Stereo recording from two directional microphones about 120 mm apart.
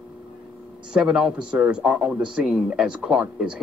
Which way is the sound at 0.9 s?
5° right (ahead or behind).